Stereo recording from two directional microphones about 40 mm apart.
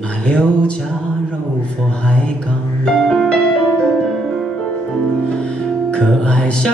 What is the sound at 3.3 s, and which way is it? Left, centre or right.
Music, left.